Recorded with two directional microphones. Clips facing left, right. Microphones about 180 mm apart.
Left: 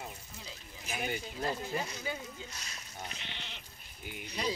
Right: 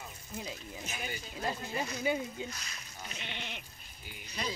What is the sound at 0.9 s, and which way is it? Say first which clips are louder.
Speech: left 7 dB; 55° left (ahead or behind).